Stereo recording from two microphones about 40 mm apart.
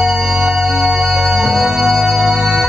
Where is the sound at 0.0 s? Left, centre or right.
Centre.